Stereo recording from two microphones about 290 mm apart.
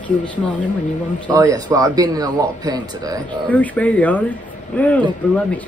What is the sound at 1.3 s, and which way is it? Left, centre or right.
Speech, centre.